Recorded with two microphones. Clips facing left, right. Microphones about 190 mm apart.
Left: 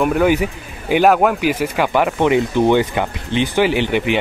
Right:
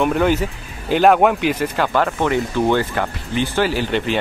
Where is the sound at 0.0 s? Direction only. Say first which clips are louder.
Left 2 dB; 5° left (ahead or behind).